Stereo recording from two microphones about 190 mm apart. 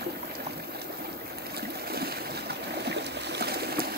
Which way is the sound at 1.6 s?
55° right (ahead or behind).